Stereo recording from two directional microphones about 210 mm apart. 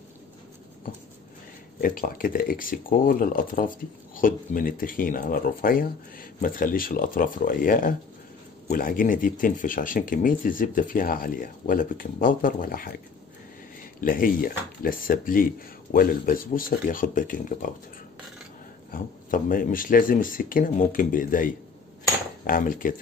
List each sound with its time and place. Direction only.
1.8 s speech: 40° left (ahead or behind)
14.0 s speech: 40° left (ahead or behind)
18.9 s speech: 40° left (ahead or behind)